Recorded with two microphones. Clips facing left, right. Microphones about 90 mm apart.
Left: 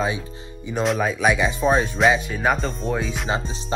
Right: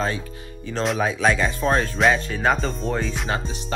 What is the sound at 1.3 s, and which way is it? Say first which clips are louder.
Speech: left 2 dB; 10° left (ahead or behind).